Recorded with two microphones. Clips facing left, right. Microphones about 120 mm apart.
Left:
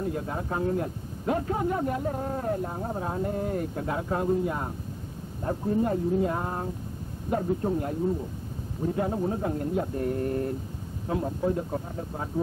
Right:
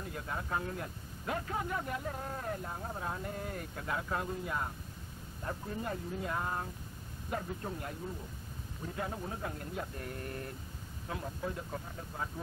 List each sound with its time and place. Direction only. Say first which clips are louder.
0.0 s a man's voice: left 10 dB; 30° left (ahead or behind)